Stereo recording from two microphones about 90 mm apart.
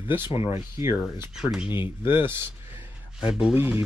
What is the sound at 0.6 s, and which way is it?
Speech, 35° right (ahead or behind).